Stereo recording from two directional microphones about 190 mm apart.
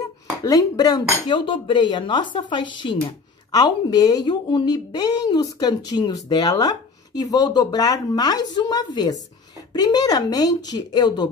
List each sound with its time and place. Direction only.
0.4 s speech: 20° left (ahead or behind)